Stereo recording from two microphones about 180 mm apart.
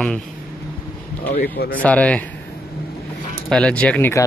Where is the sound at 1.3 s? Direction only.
55° left (ahead or behind).